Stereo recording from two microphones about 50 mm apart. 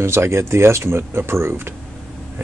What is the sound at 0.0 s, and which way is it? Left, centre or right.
Speech, right.